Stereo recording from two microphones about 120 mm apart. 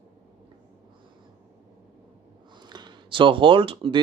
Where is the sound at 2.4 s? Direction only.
40° right (ahead or behind).